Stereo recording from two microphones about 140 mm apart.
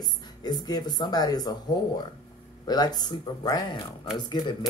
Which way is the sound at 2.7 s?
30° left (ahead or behind).